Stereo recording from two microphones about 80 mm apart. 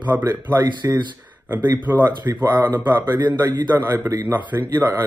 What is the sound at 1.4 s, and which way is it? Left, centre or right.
Speech, right.